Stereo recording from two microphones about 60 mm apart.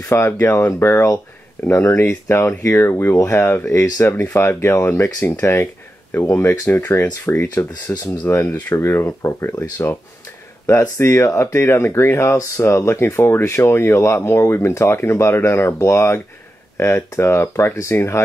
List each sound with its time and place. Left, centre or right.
0.0 s speech: left
0.4 s speech: left
0.7 s speech: left
10.7 s speech: left